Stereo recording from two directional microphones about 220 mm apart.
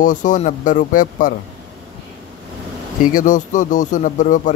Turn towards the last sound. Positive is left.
turn(degrees=35)  # may be behind; listen again after turning